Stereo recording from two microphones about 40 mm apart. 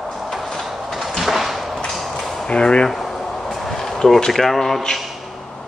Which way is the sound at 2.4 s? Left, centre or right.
Left.